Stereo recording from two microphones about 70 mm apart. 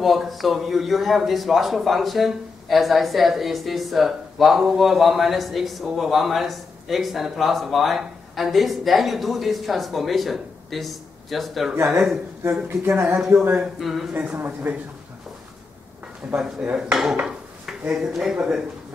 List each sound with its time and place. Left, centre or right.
0.0 s a man's voice: centre
11.7 s speech: right
13.7 s a man's voice: centre
14.4 s speech: right
16.3 s dishes: centre